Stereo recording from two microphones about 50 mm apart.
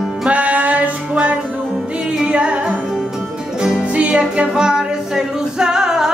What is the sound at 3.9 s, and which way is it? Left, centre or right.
Music, right.